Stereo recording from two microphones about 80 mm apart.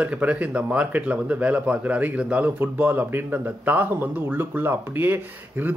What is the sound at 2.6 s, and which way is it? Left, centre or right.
Speech, right.